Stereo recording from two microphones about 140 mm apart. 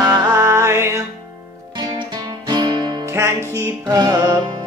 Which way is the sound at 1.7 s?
35° right (ahead or behind).